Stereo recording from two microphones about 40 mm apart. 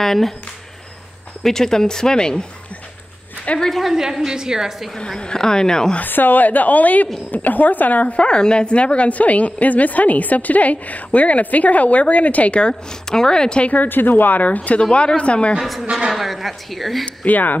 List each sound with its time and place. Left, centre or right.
0.0 s speech: centre
1.4 s speech: centre
3.7 s a woman's voice: centre
4.9 s speech: centre
6.0 s a woman's voice: left
8.2 s speech: left
13.8 s a woman's voice: left
14.9 s speech: left
15.6 s a woman's voice: centre
17.0 s speech: left